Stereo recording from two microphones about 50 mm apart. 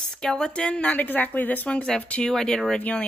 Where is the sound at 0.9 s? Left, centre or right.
Left.